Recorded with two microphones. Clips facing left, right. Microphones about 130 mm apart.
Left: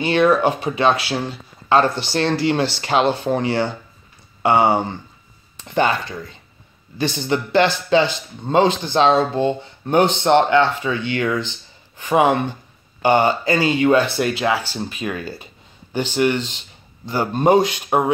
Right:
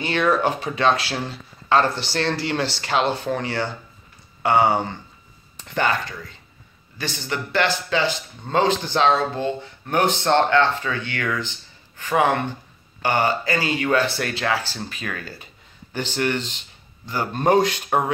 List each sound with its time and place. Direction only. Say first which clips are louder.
0.0 s speech: left 5 dB; 20° left (ahead or behind)
2.0 s speech: left 5 dB; 20° left (ahead or behind)
17.0 s speech: left 4 dB; 25° left (ahead or behind)